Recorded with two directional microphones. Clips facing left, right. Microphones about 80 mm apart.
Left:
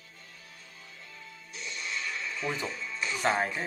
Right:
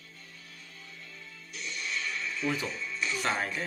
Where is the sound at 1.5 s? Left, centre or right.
Left.